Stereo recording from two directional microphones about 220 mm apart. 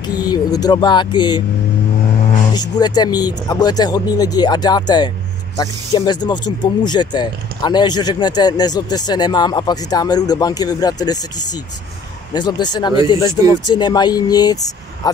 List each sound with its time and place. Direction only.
0.0 s speech: 15° left (ahead or behind)
2.5 s speech: 20° left (ahead or behind)